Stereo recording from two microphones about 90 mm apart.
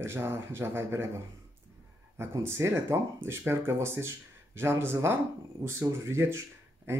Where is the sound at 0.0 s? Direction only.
30° right (ahead or behind).